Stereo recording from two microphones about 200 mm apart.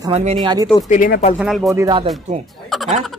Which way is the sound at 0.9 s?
40° left (ahead or behind).